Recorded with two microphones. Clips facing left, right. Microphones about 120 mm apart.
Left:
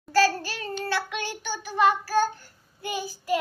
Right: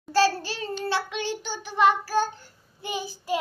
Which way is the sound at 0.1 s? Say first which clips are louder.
Even; 25° right (ahead or behind).